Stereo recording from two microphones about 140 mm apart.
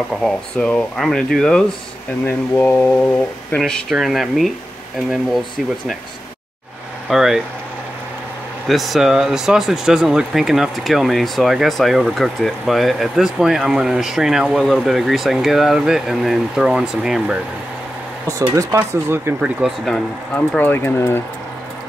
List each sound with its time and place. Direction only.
0.1 s speech: 5° left (ahead or behind)
2.2 s speech: 15° left (ahead or behind); by 4.5 s centre (ahead or behind)
7.1 s speech: centre (ahead or behind)
8.6 s speech: centre (ahead or behind)
18.5 s speech: 25° right (ahead or behind)
19.6 s speech: 5° left (ahead or behind)